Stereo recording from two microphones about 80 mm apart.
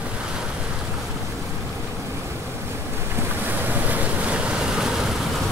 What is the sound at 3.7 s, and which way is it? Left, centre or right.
Waves, right.